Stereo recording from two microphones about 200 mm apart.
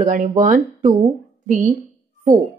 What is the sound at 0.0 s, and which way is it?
Speech, 40° right (ahead or behind).